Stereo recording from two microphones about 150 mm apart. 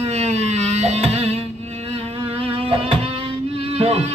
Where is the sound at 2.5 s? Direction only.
35° right (ahead or behind).